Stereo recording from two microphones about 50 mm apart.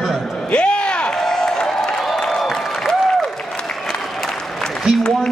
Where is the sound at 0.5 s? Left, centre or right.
Left.